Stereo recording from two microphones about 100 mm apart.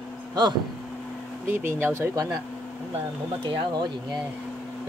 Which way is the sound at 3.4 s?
50° right (ahead or behind).